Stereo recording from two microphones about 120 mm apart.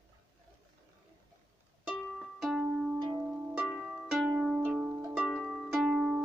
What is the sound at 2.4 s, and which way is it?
Music, 5° right (ahead or behind).